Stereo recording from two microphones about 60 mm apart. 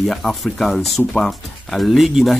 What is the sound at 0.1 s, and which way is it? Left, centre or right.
Speech, centre.